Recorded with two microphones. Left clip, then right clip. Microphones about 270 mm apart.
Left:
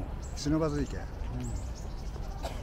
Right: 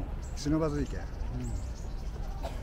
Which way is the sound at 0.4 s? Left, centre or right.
Centre.